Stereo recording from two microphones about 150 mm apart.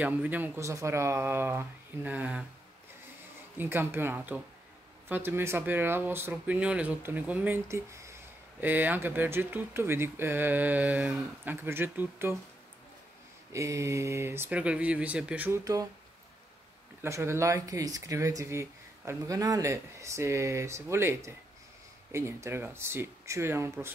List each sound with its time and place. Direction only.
0.0 s speech: 10° right (ahead or behind)
3.5 s speech: 15° right (ahead or behind)
13.5 s speech: 20° right (ahead or behind)
15.6 s speech: 25° right (ahead or behind)
17.0 s speech: 15° right (ahead or behind)